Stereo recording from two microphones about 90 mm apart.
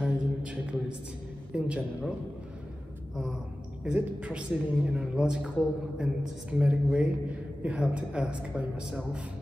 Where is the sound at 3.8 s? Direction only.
10° right (ahead or behind).